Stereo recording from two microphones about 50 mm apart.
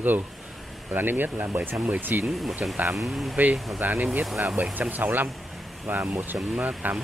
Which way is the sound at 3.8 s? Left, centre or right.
Right.